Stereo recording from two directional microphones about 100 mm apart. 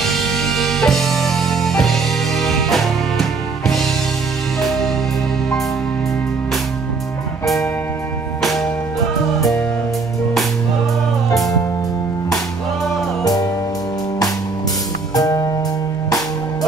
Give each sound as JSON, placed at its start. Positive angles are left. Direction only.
{"t": 0.0, "sound": "music", "side_deg": 0}
{"t": 8.4, "sound": "music", "side_deg": 0}
{"t": 13.2, "sound": "music", "side_deg": 40}
{"t": 15.1, "sound": "music", "side_deg": 40}